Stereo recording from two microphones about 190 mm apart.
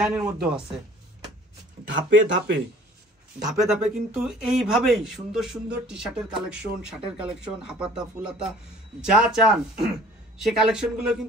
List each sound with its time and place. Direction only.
0.0 s speech: 5° right (ahead or behind)
1.9 s speech: 75° right (ahead or behind)
3.4 s speech: 5° right (ahead or behind)